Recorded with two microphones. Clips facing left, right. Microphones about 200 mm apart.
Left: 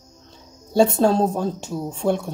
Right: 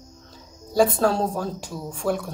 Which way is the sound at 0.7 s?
25° left (ahead or behind).